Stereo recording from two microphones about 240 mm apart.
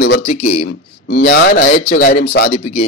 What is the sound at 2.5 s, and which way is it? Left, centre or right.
Speech, left.